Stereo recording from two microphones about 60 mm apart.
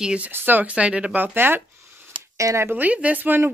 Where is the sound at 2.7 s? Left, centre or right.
Right.